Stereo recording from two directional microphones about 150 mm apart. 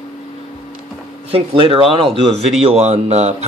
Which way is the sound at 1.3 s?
35° right (ahead or behind).